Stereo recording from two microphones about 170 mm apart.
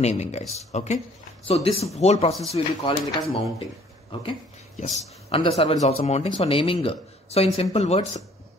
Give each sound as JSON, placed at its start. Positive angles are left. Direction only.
{"t": 0.0, "sound": "speech", "side_deg": 40}
{"t": 5.3, "sound": "speech", "side_deg": 35}